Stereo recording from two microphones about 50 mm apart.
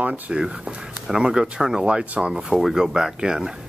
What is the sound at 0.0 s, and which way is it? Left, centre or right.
Speech, right.